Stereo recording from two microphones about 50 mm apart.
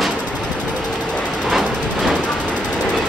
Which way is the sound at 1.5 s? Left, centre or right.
Centre.